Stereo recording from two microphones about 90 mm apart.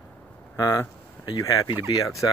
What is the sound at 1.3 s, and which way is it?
Speech, 40° left (ahead or behind).